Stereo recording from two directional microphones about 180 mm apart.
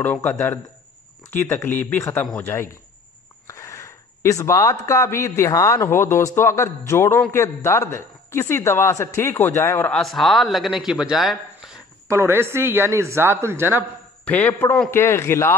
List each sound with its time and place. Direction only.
0.0 s a man's voice: 10° left (ahead or behind)
12.1 s speech: 15° right (ahead or behind)
14.2 s a man's voice: 10° left (ahead or behind)